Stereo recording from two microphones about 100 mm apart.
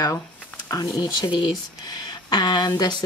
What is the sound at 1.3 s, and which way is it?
Speech, 45° left (ahead or behind).